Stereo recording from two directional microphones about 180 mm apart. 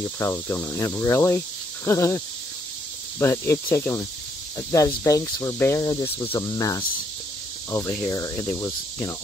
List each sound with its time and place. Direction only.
0.2 s speech: 15° left (ahead or behind)
6.2 s cricket: 15° left (ahead or behind)
7.7 s speech: 15° left (ahead or behind)